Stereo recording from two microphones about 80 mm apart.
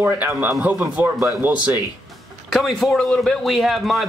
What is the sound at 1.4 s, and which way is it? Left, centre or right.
Speech, centre.